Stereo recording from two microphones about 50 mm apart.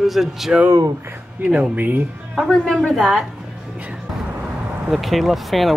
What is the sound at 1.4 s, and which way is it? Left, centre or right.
Speech, right.